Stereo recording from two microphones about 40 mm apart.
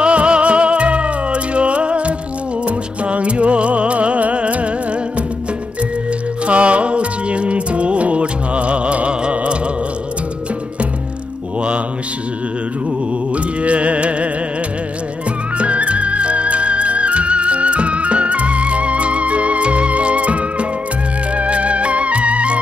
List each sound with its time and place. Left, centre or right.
0.0 s music: right
6.4 s music: right
13.3 s music: right
15.5 s music: right